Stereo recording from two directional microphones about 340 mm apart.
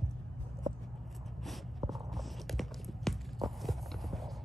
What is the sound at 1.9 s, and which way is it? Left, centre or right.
Walk, centre.